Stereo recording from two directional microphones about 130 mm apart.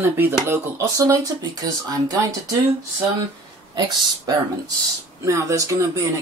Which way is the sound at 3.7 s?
30° right (ahead or behind).